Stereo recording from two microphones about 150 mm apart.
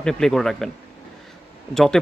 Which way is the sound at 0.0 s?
5° left (ahead or behind).